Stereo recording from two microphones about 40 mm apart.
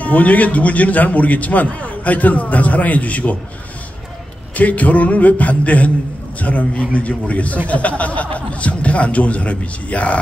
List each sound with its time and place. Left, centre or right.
0.0 s a man's voice: left
4.6 s a man's voice: left